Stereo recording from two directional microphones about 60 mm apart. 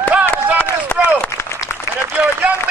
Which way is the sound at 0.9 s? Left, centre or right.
Left.